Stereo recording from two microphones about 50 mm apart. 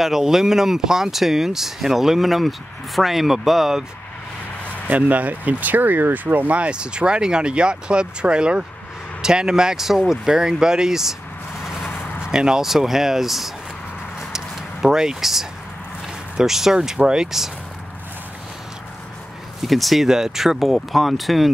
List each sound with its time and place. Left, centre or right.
0.0 s speech: centre
4.9 s speech: right; by 11.1 s centre
12.2 s speech: centre
14.3 s a sound: centre
16.3 s speech: centre
19.6 s speech: centre